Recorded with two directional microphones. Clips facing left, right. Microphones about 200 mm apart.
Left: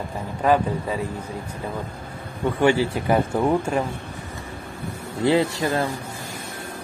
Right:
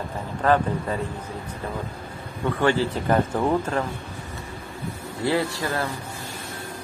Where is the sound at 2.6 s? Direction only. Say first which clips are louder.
Left 3 dB; 15° left (ahead or behind).